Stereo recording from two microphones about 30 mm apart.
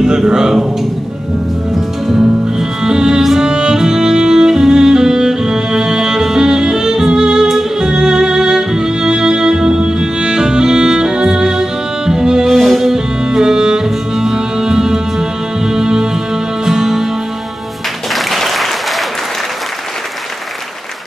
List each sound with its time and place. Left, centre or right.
0.0 s speech: right
2.8 s music: right
7.4 s music: centre
7.9 s music: centre
12.4 s music: centre
12.9 s music: right
16.6 s music: centre
18.1 s applause: centre